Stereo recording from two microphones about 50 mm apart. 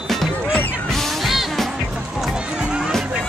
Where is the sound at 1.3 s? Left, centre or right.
Centre.